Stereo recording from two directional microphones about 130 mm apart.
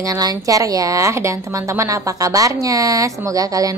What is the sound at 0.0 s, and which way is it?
Speech, 30° right (ahead or behind).